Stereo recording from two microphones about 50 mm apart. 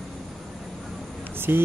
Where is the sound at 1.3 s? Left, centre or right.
Right.